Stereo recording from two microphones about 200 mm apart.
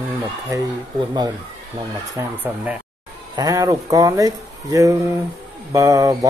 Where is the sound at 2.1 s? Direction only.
5° right (ahead or behind).